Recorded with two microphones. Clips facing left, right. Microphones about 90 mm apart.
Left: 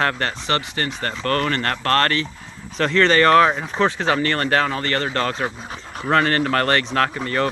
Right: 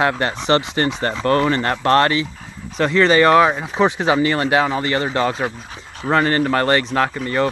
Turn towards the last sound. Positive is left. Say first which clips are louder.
# right 2 dB
turn(degrees=-5)  # may be behind; listen again after turning